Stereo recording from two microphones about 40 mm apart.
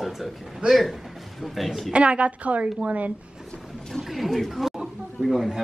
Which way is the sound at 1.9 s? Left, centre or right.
Right.